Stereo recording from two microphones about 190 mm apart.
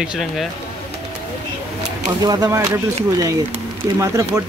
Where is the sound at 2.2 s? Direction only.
20° right (ahead or behind).